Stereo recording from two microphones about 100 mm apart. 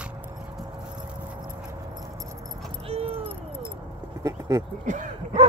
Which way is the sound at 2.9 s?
80° right.